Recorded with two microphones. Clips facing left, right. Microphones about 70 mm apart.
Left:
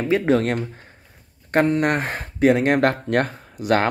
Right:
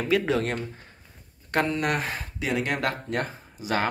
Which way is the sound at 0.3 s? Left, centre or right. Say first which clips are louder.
Left 7 dB; left.